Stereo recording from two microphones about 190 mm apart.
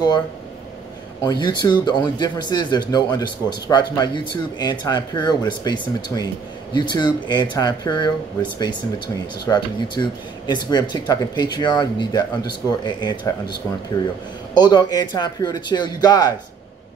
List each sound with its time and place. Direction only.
1.2 s speech: 20° left (ahead or behind)
14.6 s speech: 20° left (ahead or behind)